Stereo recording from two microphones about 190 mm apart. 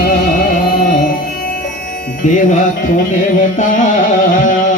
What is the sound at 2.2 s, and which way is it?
Music, 40° left (ahead or behind).